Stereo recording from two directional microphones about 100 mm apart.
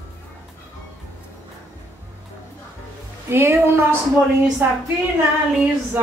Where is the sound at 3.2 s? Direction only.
25° right (ahead or behind).